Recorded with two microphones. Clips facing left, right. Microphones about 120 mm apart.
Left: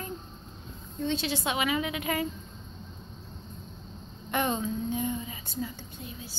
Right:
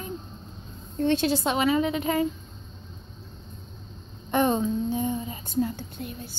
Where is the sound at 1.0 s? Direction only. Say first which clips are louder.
Right 7 dB; 65° right (ahead or behind).